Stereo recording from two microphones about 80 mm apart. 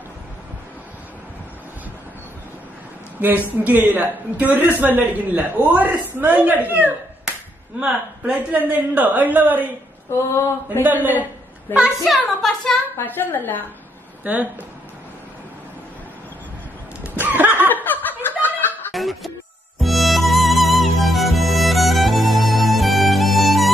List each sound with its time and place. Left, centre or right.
3.2 s a man's voice: right
10.1 s mantra: left
10.8 s a man's voice: right
11.7 s a woman's voice: left
12.4 s speech: centre
12.9 s a woman's voice: left
14.2 s a man's voice: centre
17.1 s a sound: right
17.6 s laughter: left
18.9 s music: centre